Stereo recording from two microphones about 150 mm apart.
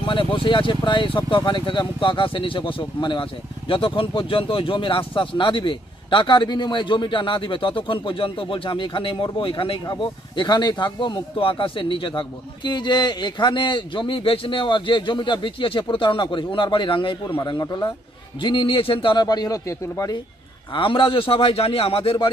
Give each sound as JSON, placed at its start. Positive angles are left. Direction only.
{"t": 0.0, "sound": "a man's voice", "side_deg": 35}
{"t": 20.7, "sound": "speech", "side_deg": 35}